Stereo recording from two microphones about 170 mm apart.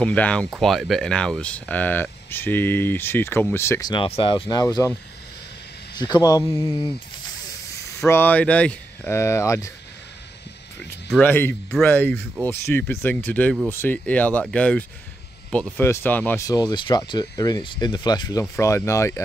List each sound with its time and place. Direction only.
0.0 s speech: 10° left (ahead or behind)
3.9 s speech: 30° left (ahead or behind)
5.9 s speech: 25° left (ahead or behind)
8.1 s speech: 10° left (ahead or behind)
10.8 s a sound: 5° left (ahead or behind)
11.7 s speech: 10° left (ahead or behind)
16.4 s speech: 25° left (ahead or behind)